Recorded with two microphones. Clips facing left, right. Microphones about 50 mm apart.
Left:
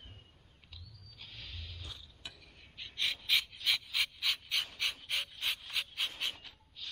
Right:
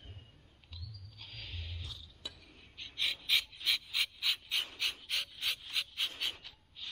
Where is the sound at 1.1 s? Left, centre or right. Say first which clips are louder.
Even; centre.